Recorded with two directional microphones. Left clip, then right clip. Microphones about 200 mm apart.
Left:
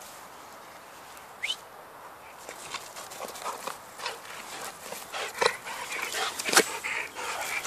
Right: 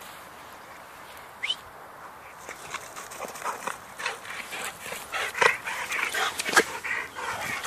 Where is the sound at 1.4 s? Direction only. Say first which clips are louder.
Right 2 dB; 5° left (ahead or behind).